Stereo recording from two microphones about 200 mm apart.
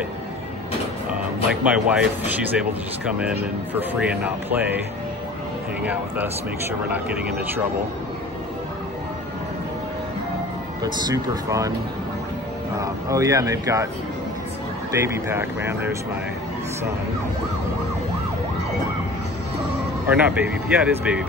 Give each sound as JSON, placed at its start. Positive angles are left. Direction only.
{"t": 1.1, "sound": "speech", "side_deg": -5}
{"t": 5.8, "sound": "speech", "side_deg": -5}
{"t": 10.8, "sound": "speech", "side_deg": -20}
{"t": 12.8, "sound": "speech", "side_deg": -15}
{"t": 15.0, "sound": "speech", "side_deg": -10}
{"t": 20.1, "sound": "speech", "side_deg": -5}